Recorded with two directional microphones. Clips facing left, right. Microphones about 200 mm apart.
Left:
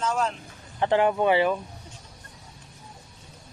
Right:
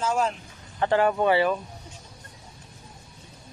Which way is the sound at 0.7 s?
15° left (ahead or behind).